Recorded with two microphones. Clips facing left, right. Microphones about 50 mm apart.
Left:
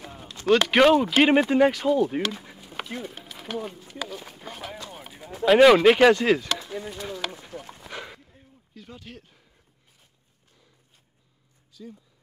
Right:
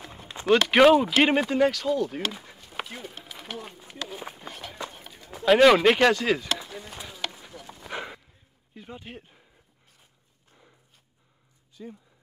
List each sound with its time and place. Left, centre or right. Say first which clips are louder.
0.5 s speech: even; centre
2.4 s a sound: even; centre
4.1 s run: right 1 dB; centre
4.4 s run: left 3 dB; centre
4.9 s a sound: left 5 dB; centre
5.3 s speech: left 2 dB; centre
7.1 s run: left 1 dB; centre
7.8 s a sound: right 4 dB; centre
8.7 s speech: right 2 dB; right
11.7 s speech: right 1 dB; right